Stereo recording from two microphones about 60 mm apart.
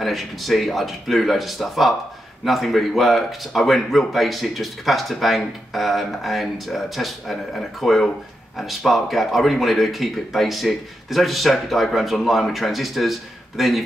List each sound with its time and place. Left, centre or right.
0.0 s speech: centre